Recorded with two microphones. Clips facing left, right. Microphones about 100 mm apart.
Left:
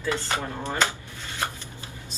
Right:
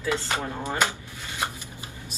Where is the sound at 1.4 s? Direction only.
15° right (ahead or behind).